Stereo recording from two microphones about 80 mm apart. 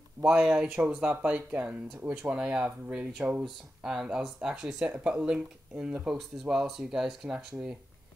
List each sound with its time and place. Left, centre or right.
0.2 s speech: centre
3.4 s speech: centre